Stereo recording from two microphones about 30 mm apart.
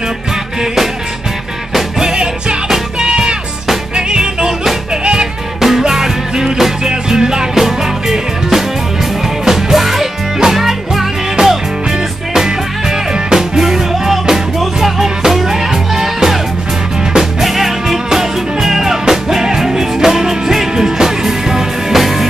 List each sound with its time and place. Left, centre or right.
2.0 s music: right
5.6 s music: centre
7.6 s music: centre
9.8 s music: centre
11.4 s music: right
13.3 s music: centre
21.9 s music: centre